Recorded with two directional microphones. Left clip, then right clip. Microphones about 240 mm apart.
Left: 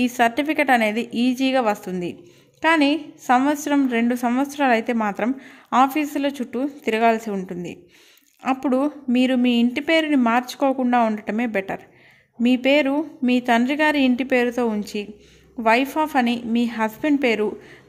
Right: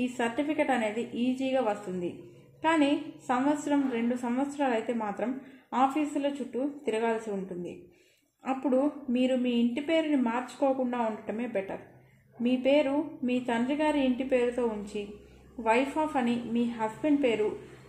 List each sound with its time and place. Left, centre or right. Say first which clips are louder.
0.0 s a woman's voice: left 11 dB; left
8.4 s a woman's voice: left 7 dB; left